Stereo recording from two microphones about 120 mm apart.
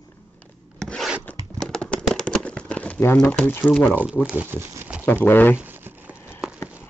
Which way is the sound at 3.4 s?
15° left (ahead or behind).